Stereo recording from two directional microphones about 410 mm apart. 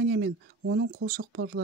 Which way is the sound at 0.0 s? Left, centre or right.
Right.